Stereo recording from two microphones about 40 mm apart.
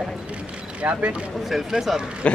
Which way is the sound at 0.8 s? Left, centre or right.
Right.